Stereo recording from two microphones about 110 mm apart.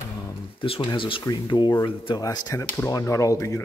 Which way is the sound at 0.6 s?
55° left (ahead or behind).